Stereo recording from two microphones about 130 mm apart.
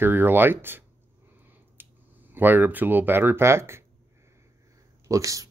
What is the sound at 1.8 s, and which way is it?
Clicking, 15° right (ahead or behind).